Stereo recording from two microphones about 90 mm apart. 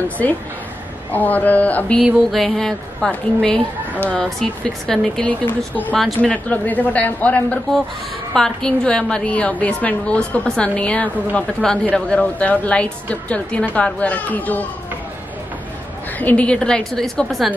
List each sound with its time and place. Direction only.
1.1 s a woman's voice: 20° left (ahead or behind)
2.3 s a woman's voice: 5° left (ahead or behind)
16.2 s a woman's voice: 15° left (ahead or behind)